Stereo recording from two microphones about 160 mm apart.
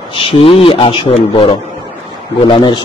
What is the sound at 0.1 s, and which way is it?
A man's voice, 35° left (ahead or behind).